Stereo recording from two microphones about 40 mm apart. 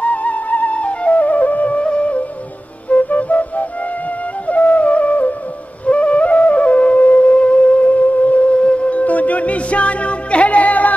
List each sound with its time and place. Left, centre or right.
0.0 s flute: left
1.9 s music: left
5.9 s flute: left